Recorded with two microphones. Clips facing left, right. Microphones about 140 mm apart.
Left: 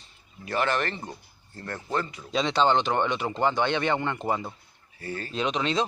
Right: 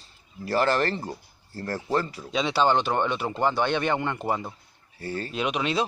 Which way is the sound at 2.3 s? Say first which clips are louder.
Even; 5° right (ahead or behind).